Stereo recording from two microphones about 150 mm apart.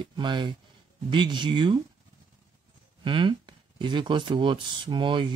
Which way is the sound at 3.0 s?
35° right (ahead or behind).